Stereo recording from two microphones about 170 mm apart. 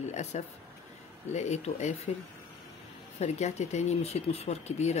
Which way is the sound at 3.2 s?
40° left (ahead or behind).